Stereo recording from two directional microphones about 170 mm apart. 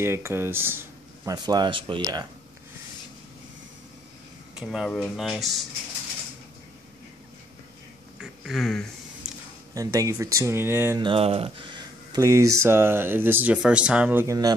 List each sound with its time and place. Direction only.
0.0 s speech: 15° right (ahead or behind)
4.6 s speech: 5° right (ahead or behind)
8.2 s a sound: centre (ahead or behind)
9.8 s speech: 20° right (ahead or behind)
11.0 s speech: 30° right (ahead or behind)